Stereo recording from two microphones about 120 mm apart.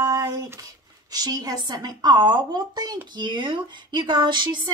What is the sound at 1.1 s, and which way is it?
A woman's voice, 35° right (ahead or behind).